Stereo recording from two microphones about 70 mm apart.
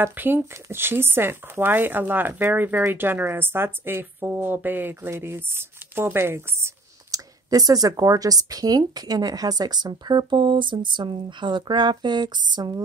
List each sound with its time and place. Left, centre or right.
0.0 s speech: right
7.1 s speech: right